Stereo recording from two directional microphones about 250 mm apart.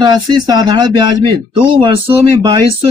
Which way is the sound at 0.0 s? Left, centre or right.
Centre.